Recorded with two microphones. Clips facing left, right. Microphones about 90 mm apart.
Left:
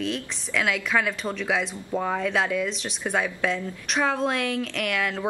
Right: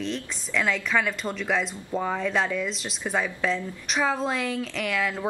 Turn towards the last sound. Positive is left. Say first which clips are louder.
# even
turn(degrees=0)  # may be behind; listen again after turning